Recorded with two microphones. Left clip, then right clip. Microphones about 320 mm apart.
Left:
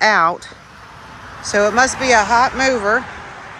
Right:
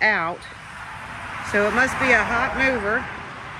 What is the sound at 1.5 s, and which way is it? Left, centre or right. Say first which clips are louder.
Speech: left 6 dB; centre.